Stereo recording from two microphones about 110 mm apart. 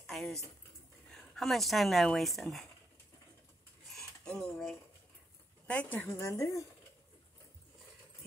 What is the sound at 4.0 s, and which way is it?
Cutlery, 5° left (ahead or behind).